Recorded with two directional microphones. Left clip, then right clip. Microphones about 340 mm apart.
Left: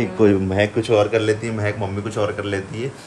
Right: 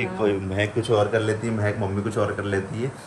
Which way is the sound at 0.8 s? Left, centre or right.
Centre.